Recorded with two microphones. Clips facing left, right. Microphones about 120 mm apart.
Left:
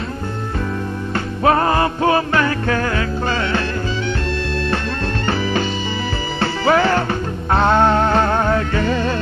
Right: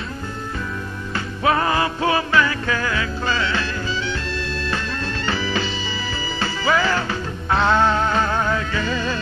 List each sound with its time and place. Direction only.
1.1 s music: 45° left (ahead or behind)
5.2 s music: 50° left (ahead or behind)